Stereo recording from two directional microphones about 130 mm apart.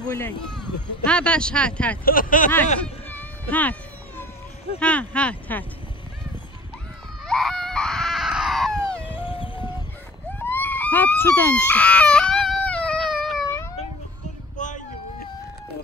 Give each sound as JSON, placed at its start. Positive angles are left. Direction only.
{"t": 0.0, "sound": "speech", "side_deg": 20}
{"t": 0.5, "sound": "speech", "side_deg": 5}
{"t": 2.0, "sound": "speech", "side_deg": 90}
{"t": 2.8, "sound": "a sound", "side_deg": 10}
{"t": 4.7, "sound": "speech", "side_deg": 10}
{"t": 7.2, "sound": "screaming", "side_deg": 0}
{"t": 9.1, "sound": "music", "side_deg": 45}
{"t": 10.4, "sound": "a sound", "side_deg": 15}
{"t": 14.6, "sound": "a sound", "side_deg": 75}